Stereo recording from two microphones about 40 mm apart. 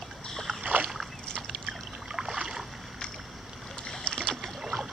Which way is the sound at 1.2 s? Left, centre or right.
Centre.